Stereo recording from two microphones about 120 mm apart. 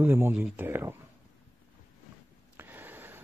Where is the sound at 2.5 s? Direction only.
15° right (ahead or behind).